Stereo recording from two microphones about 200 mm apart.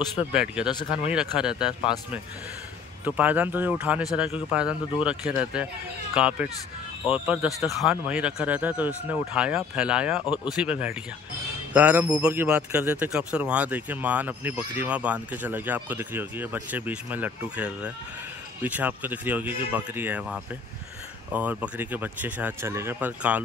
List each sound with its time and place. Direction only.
0.3 s speech: 5° right (ahead or behind)
0.7 s speech: 20° left (ahead or behind)
1.1 s speech: 5° right (ahead or behind)
3.1 s a man's voice: 10° right (ahead or behind)